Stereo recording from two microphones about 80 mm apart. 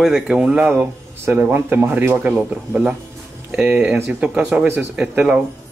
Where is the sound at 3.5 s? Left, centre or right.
Centre.